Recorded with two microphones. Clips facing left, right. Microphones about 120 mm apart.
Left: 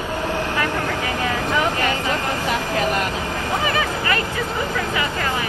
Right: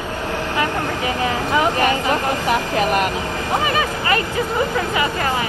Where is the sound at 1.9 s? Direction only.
15° right (ahead or behind).